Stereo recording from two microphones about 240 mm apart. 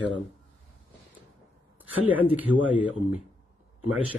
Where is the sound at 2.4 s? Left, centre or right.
Centre.